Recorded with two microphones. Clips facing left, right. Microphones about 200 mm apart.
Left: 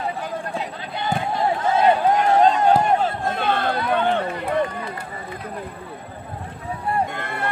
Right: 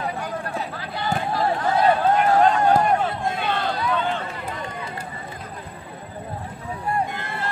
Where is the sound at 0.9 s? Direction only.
20° left (ahead or behind).